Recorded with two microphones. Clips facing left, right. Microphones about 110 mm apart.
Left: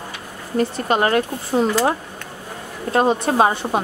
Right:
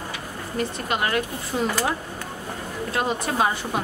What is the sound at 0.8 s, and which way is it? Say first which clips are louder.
A woman's voice: left 7 dB; 40° left (ahead or behind).